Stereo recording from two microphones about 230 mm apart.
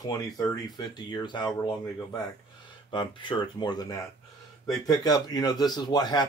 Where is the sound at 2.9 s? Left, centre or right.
Left.